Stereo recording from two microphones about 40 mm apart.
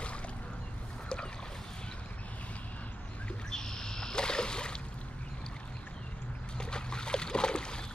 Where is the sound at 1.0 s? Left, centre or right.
Left.